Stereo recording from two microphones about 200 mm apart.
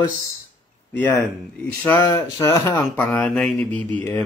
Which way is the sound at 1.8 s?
15° left (ahead or behind).